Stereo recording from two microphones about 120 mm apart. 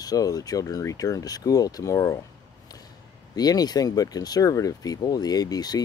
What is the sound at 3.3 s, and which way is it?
Speech, 35° left (ahead or behind).